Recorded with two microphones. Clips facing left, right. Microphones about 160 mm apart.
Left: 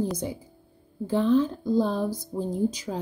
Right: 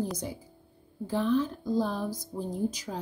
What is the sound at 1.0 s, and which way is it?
Speech, 25° left (ahead or behind).